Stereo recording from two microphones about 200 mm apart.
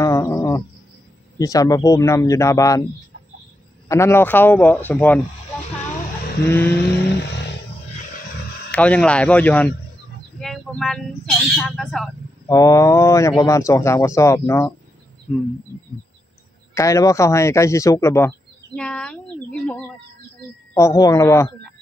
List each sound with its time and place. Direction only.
0.0 s music: 15° left (ahead or behind)
1.4 s a man's voice: 15° left (ahead or behind)
3.9 s a man's voice: 15° left (ahead or behind)
6.4 s a man's voice: 10° left (ahead or behind)
8.7 s a man's voice: 5° left (ahead or behind)
12.4 s a man's voice: 15° left (ahead or behind)
16.7 s a man's voice: 15° left (ahead or behind)